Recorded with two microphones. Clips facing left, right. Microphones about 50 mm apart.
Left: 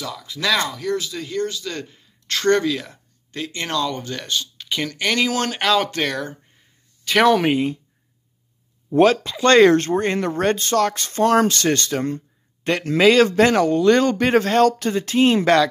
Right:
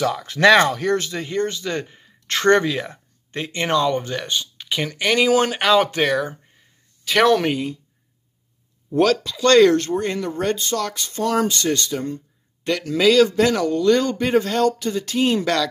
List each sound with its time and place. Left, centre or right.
0.0 s speech: right; by 6.3 s centre
7.1 s speech: centre
7.5 s speech: left
8.9 s speech: left
12.6 s speech: left